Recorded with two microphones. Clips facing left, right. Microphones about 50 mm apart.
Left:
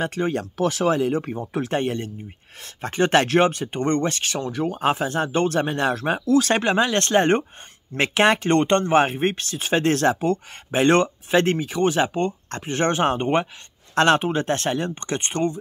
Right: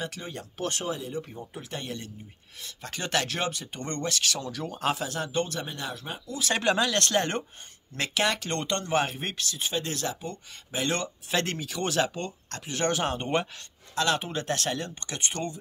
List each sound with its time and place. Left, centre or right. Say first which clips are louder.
0.0 s speech: left 12 dB; left
0.8 s speech: left 12 dB; left
1.6 s speech: left 13 dB; left
6.6 s speech: left 5 dB; left
9.6 s speech: left 12 dB; left
11.2 s speech: left 10 dB; left
13.9 s speech: left 9 dB; left